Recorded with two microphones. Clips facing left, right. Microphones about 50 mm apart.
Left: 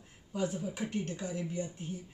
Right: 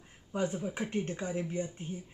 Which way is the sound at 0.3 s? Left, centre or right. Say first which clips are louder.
Right 2 dB; right.